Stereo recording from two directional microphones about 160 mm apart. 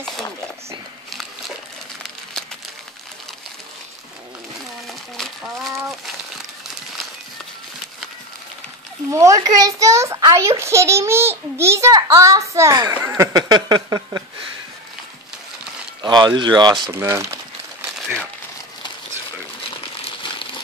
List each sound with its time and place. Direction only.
9.1 s a child's voice: 20° right (ahead or behind)
16.0 s a child's voice: 25° right (ahead or behind)
17.9 s crumpling: centre (ahead or behind)